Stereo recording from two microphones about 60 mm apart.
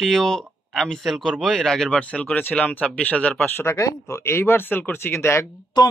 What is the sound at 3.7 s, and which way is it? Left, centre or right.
Speech, left.